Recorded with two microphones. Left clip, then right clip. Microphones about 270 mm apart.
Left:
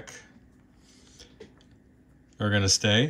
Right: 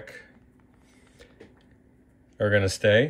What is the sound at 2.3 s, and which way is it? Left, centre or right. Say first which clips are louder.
Speech: right 2 dB; centre.